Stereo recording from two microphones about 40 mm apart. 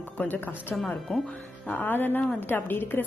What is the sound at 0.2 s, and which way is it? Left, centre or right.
Speech, left.